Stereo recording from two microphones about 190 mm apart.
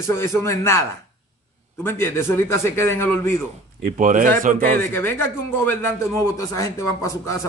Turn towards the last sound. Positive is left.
turn(degrees=15)  # may be behind; listen again after turning